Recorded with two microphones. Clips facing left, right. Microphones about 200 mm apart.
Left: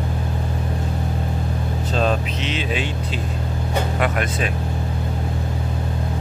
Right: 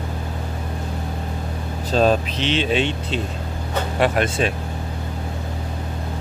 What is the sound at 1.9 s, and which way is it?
Speech, 35° right (ahead or behind).